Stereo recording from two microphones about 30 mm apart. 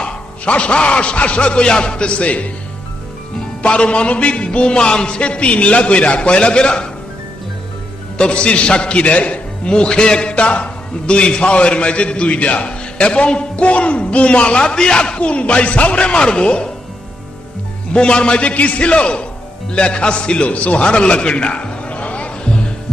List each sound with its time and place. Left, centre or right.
0.0 s a man's voice: left
3.6 s a man's voice: left
8.2 s a man's voice: left
9.7 s a man's voice: left
15.1 s a man's voice: left
17.9 s a man's voice: left
18.4 s a man's voice: left
20.4 s a man's voice: left